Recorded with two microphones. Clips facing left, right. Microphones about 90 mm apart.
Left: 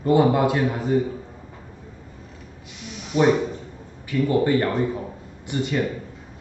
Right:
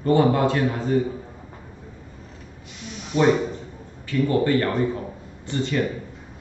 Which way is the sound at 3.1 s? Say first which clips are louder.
Even; 10° left (ahead or behind).